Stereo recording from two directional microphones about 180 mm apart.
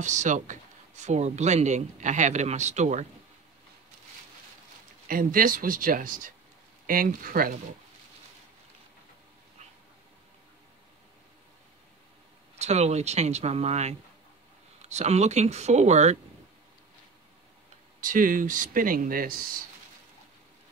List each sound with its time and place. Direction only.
0.0 s speech: 40° right (ahead or behind)
5.0 s speech: 50° right (ahead or behind)
12.5 s speech: 40° right (ahead or behind)
18.0 s speech: 50° right (ahead or behind)